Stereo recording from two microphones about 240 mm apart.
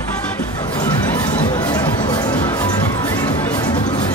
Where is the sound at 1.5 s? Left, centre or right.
Centre.